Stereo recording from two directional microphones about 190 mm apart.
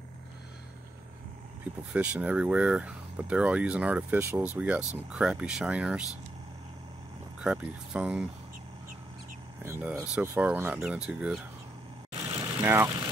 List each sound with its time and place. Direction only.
2.0 s speech: 10° right (ahead or behind)
7.3 s speech: 5° right (ahead or behind)
9.6 s speech: 10° right (ahead or behind)
12.5 s speech: 15° right (ahead or behind)